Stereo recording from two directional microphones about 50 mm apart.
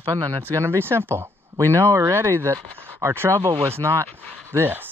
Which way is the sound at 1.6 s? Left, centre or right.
Right.